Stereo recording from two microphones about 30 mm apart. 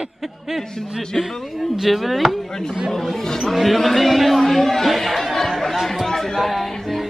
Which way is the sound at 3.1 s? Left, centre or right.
Centre.